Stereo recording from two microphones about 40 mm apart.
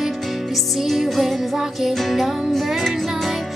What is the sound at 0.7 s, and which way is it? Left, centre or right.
Music, centre.